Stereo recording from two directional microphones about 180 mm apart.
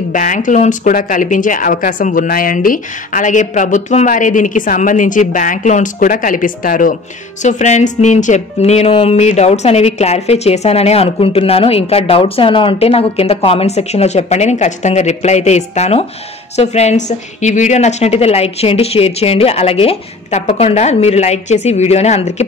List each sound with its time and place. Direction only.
0.1 s speech: 45° left (ahead or behind)